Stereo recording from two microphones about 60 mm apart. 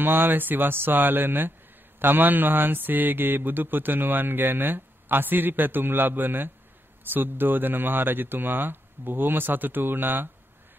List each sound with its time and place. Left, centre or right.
0.0 s speech: right